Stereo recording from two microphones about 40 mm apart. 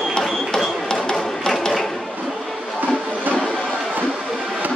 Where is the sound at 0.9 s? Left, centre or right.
Centre.